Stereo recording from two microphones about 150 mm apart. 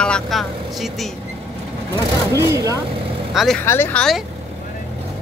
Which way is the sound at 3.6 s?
15° left (ahead or behind).